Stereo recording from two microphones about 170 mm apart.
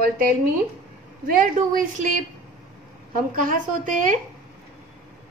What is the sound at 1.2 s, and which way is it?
Speech, 60° right (ahead or behind).